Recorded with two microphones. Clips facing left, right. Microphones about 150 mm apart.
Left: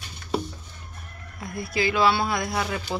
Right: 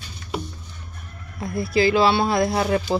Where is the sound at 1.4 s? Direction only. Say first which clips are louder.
Right 7 dB; 30° right (ahead or behind).